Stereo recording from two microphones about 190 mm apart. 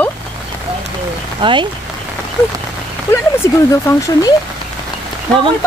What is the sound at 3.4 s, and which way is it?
Speech, 20° left (ahead or behind).